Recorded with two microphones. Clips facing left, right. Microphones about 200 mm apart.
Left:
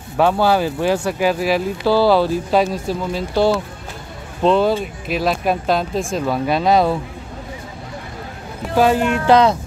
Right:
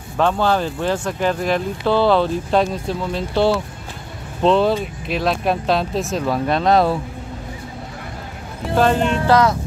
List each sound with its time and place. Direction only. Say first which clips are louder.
0.2 s speech: left 2 dB; 10° left (ahead or behind)
8.7 s speech: left 2 dB; 10° left (ahead or behind)
9.3 s music: left 3 dB; 20° left (ahead or behind)